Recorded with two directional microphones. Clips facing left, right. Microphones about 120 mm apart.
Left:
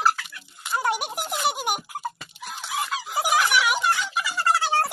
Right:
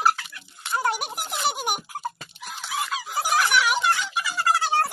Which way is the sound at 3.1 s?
5° left (ahead or behind).